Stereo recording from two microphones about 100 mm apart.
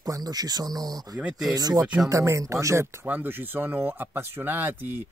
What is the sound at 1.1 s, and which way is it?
Speech, 10° right (ahead or behind).